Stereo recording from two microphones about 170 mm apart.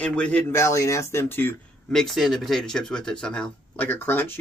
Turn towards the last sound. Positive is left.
turn(degrees=10)  # may be behind; listen again after turning